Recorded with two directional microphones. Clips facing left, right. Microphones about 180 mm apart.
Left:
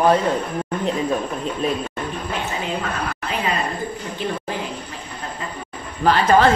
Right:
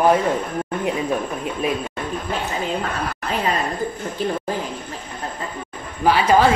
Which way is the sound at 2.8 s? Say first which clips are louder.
Even; 40° right (ahead or behind).